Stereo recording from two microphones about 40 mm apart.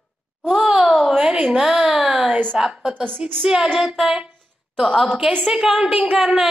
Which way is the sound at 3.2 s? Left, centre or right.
Centre.